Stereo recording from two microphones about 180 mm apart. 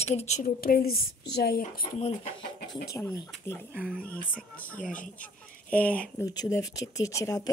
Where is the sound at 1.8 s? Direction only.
35° left (ahead or behind).